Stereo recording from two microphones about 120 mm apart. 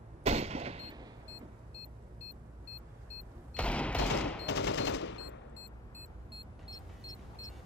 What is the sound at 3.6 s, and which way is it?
Fusillade, 10° left (ahead or behind).